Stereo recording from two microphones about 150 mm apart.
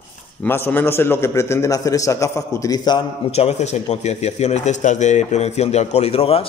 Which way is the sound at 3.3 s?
45° left (ahead or behind).